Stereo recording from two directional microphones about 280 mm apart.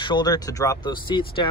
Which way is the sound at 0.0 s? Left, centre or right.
Centre.